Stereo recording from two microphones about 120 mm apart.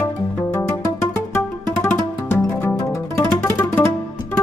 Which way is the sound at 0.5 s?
20° left (ahead or behind).